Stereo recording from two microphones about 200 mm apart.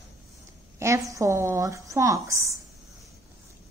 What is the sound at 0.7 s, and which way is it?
A woman's voice, 15° right (ahead or behind).